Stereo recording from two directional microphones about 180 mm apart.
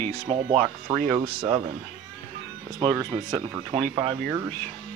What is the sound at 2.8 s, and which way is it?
Speech, 25° right (ahead or behind).